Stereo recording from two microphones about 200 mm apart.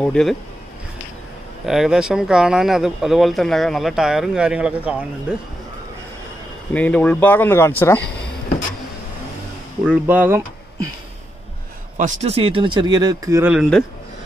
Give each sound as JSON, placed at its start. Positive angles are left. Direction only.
{"t": 0.0, "sound": "speech", "side_deg": 5}
{"t": 1.7, "sound": "speech", "side_deg": -5}
{"t": 6.7, "sound": "speech", "side_deg": 5}
{"t": 9.8, "sound": "speech", "side_deg": -10}
{"t": 12.0, "sound": "speech", "side_deg": -30}